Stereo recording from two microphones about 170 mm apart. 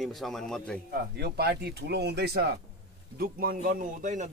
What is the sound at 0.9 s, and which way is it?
Speech, 65° right (ahead or behind).